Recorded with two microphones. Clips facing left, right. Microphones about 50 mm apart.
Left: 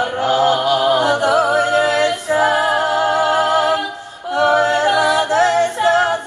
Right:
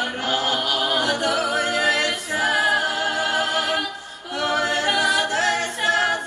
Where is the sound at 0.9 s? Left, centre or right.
Left.